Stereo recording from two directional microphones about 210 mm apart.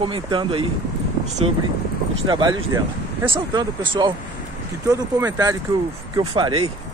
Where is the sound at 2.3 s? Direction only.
20° right (ahead or behind).